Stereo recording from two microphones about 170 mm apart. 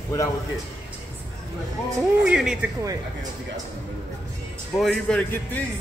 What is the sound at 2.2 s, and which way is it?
Speech, 5° right (ahead or behind).